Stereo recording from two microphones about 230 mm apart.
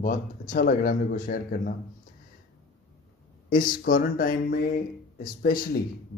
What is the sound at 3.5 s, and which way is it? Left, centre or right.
Speech, left.